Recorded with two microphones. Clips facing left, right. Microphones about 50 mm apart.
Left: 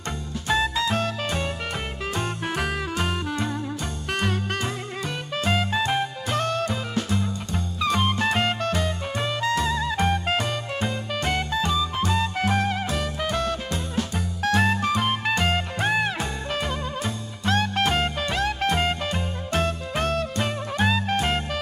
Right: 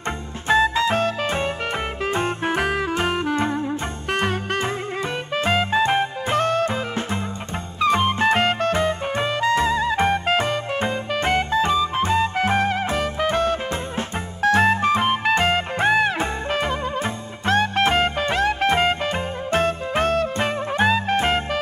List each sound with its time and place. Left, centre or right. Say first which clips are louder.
0.5 s music: right 5 dB; right